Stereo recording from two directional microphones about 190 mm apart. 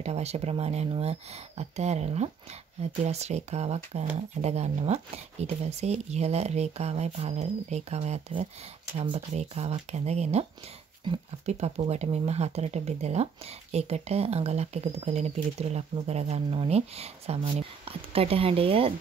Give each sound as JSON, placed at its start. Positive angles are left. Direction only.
{"t": 0.0, "sound": "speech", "side_deg": -35}